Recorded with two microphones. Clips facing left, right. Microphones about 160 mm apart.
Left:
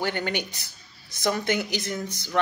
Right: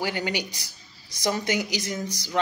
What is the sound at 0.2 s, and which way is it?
Speech, 55° left (ahead or behind).